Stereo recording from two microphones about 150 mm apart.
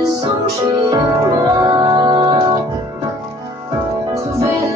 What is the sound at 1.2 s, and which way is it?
Music, 20° right (ahead or behind).